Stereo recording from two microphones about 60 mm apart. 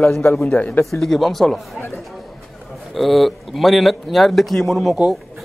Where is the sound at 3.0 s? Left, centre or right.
Centre.